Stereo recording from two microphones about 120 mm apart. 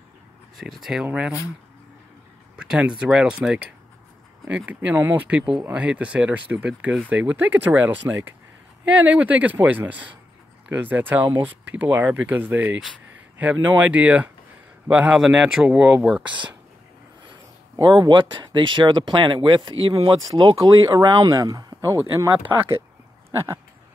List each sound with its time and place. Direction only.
0.6 s speech: centre (ahead or behind)
2.5 s speech: 5° right (ahead or behind)
17.8 s speech: 40° right (ahead or behind); by 22.3 s 25° right (ahead or behind)